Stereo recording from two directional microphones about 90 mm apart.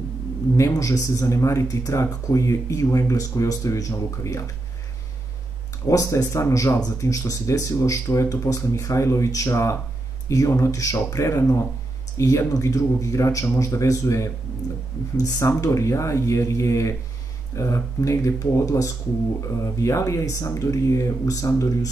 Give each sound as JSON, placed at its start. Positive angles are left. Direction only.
{"t": 0.6, "sound": "speech", "side_deg": 35}
{"t": 5.9, "sound": "speech", "side_deg": 40}